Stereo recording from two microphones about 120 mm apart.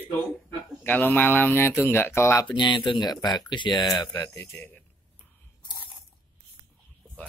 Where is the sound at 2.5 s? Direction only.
40° left (ahead or behind); by 4.7 s 25° left (ahead or behind).